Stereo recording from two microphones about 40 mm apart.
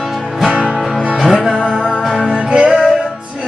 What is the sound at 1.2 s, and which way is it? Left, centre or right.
Music, centre.